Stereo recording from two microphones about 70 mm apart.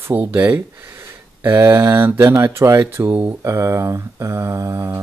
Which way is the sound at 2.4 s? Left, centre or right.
Right.